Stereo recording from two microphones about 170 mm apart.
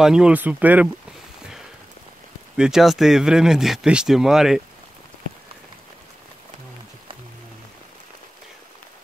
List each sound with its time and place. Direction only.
0.0 s speech: 5° right (ahead or behind)
2.5 s speech: 5° right (ahead or behind)